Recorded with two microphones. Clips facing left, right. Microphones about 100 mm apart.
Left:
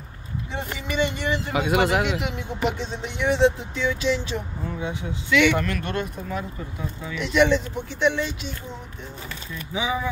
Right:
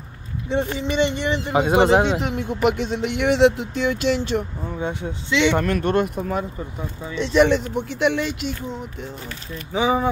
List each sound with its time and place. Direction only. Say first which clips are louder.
0.5 s speech: right 9 dB; 25° right (ahead or behind)
2.3 s speech: right 6 dB; 65° right (ahead or behind)
5.3 s speech: even; 25° right (ahead or behind)
5.6 s speech: right 7 dB; 45° right (ahead or behind)
6.0 s speech: right 6 dB; 55° right (ahead or behind)
7.1 s speech: right 3 dB; 30° right (ahead or behind)
7.4 s speech: right 2 dB; 60° right (ahead or behind)
9.7 s speech: right 6 dB; 45° right (ahead or behind)